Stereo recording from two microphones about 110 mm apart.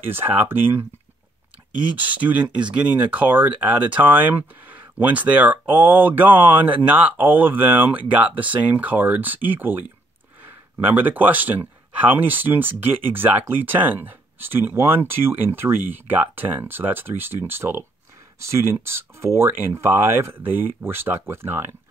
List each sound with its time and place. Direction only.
0.0 s speech: 20° right (ahead or behind)
2.0 s speech: 15° right (ahead or behind)
10.9 s speech: 15° right (ahead or behind)